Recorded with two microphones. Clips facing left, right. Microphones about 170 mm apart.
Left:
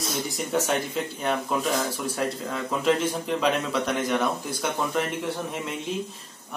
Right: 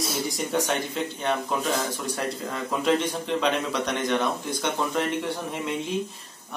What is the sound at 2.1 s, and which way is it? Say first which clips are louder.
A man's voice: left 1 dB; centre (ahead or behind).